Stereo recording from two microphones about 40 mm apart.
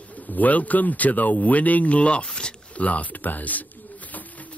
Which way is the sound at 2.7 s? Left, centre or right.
Left.